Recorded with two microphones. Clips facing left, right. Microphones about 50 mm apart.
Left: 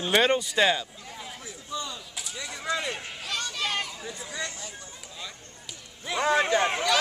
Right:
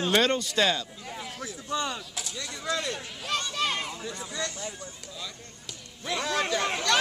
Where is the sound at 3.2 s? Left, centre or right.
Right.